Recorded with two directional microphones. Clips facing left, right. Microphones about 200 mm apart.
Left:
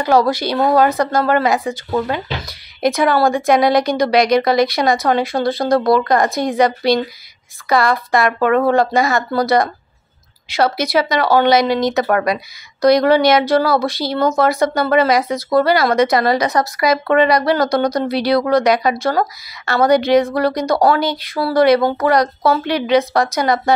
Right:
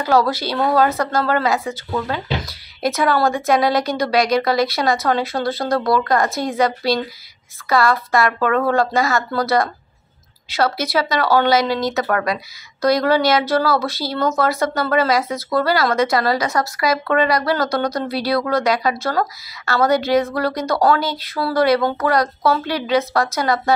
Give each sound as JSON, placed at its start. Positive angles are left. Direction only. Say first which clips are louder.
{"t": 0.0, "sound": "speech", "louder": "left 3 dB", "side_deg": 15}